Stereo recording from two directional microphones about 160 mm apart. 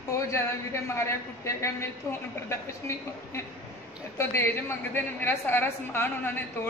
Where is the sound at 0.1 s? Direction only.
15° left (ahead or behind).